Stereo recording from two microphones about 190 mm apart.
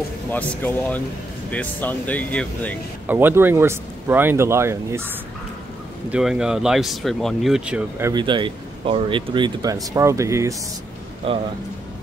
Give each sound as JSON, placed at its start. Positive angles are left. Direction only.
{"t": 0.3, "sound": "speech", "side_deg": 10}
{"t": 3.1, "sound": "speech", "side_deg": -10}
{"t": 6.1, "sound": "speech", "side_deg": -5}
{"t": 8.1, "sound": "speech", "side_deg": -25}
{"t": 11.2, "sound": "speech", "side_deg": -30}